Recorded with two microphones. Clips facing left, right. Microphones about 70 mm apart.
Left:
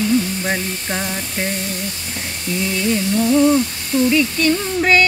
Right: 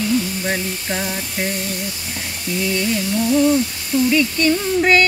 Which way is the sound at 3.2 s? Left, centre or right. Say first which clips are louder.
Left 1 dB; left.